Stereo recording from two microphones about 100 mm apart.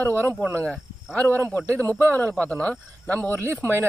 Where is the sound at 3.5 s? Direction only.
25° right (ahead or behind).